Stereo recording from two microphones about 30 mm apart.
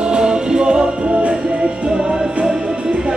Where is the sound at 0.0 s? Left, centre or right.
Right.